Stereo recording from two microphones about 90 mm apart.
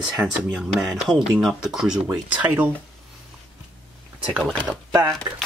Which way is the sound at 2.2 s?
15° right (ahead or behind).